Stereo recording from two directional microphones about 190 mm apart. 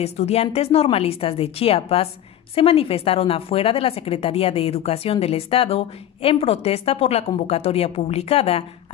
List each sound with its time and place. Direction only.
0.0 s a woman's voice: 35° left (ahead or behind)